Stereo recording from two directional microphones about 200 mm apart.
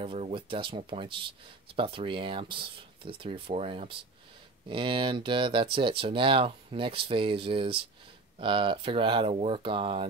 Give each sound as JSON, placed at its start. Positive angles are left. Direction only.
{"t": 0.0, "sound": "speech", "side_deg": -25}